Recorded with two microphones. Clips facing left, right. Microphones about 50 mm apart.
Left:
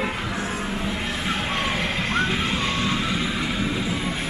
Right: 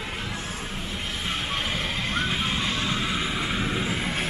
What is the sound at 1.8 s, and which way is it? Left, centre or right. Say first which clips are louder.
Vehicle: left 4 dB; left.